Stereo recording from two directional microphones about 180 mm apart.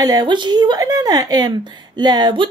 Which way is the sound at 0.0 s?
20° right (ahead or behind).